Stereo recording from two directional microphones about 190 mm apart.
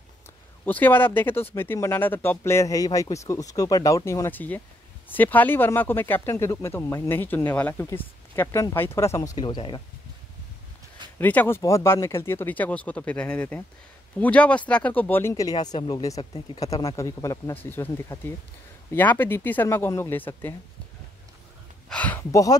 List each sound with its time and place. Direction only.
0.7 s speech: 10° left (ahead or behind); by 9.8 s 25° left (ahead or behind)
11.1 s speech: 10° left (ahead or behind)
21.8 s speech: 5° left (ahead or behind)